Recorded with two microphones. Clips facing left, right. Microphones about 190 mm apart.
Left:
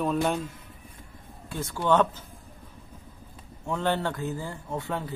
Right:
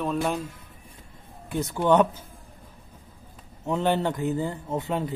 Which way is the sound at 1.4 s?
20° right (ahead or behind).